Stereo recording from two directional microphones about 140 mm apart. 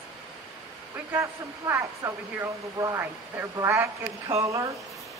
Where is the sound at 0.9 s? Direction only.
15° right (ahead or behind).